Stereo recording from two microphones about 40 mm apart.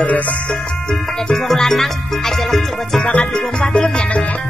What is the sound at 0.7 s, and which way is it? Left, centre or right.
Music, centre.